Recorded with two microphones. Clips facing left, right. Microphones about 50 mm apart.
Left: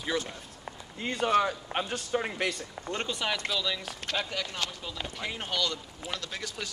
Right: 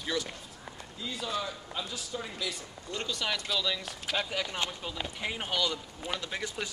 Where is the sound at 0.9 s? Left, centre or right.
Left.